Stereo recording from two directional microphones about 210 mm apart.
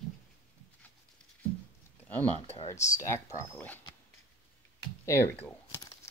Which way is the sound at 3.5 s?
10° left (ahead or behind).